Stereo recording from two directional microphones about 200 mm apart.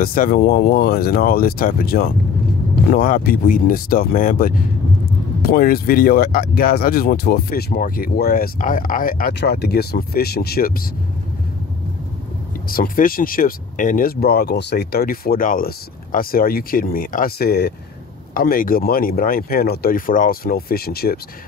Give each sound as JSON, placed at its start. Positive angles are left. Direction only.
{"t": 0.0, "sound": "speech", "side_deg": 45}
{"t": 12.6, "sound": "speech", "side_deg": 45}